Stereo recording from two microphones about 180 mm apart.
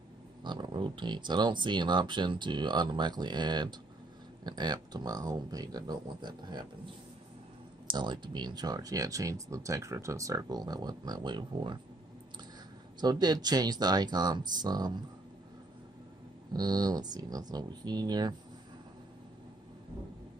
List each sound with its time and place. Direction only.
0.4 s speech: 25° right (ahead or behind)
7.8 s speech: 25° right (ahead or behind)
13.0 s speech: 20° right (ahead or behind)
16.5 s speech: 20° right (ahead or behind)